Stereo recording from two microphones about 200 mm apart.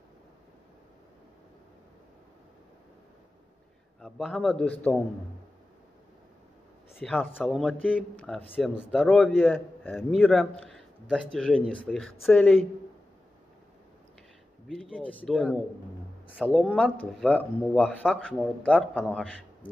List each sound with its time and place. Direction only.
4.0 s speech: centre (ahead or behind)
7.0 s speech: 5° left (ahead or behind)
10.7 s a sound: 5° left (ahead or behind)
11.3 s speech: 5° left (ahead or behind)
14.7 s speech: 5° left (ahead or behind)